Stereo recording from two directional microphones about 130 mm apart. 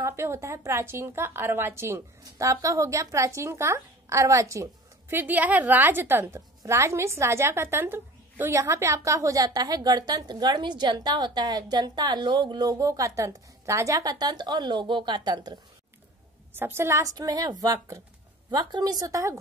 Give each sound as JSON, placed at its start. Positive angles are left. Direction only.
{"t": 0.0, "sound": "a woman's voice", "side_deg": -20}
{"t": 5.1, "sound": "a woman's voice", "side_deg": -15}
{"t": 16.5, "sound": "a woman's voice", "side_deg": -15}